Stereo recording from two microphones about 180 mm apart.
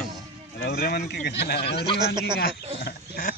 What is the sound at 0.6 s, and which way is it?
A man's voice, 60° left (ahead or behind).